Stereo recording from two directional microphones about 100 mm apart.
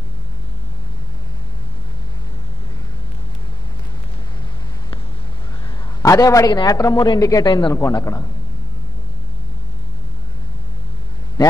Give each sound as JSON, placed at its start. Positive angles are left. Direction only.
{"t": 6.0, "sound": "speech", "side_deg": 35}
{"t": 7.4, "sound": "speech", "side_deg": 50}
{"t": 7.7, "sound": "a man's voice", "side_deg": 25}